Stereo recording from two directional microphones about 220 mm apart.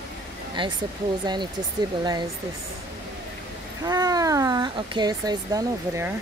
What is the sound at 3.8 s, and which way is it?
Speech, 15° right (ahead or behind).